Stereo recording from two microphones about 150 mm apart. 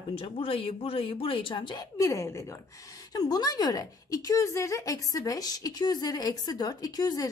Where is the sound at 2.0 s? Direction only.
20° left (ahead or behind).